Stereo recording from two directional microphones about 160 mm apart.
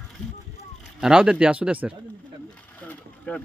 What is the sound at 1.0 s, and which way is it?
Speech, 5° right (ahead or behind).